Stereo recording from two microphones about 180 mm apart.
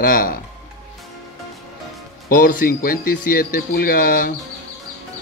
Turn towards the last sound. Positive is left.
turn(degrees=55)  # may be behind; listen again after turning